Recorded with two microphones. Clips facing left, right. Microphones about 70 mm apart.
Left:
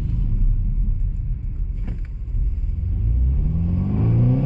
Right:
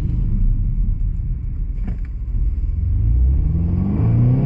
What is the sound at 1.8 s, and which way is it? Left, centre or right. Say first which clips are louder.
Vehicle: right 4 dB; centre.